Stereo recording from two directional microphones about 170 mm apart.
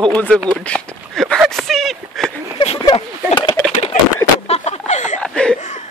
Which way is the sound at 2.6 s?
30° left (ahead or behind).